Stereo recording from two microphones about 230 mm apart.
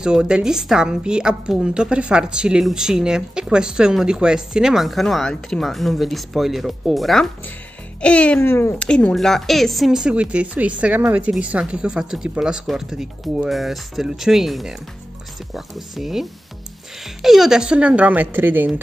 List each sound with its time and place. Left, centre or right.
0.0 s a woman's voice: centre